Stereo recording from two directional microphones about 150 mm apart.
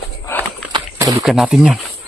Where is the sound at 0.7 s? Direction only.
25° right (ahead or behind).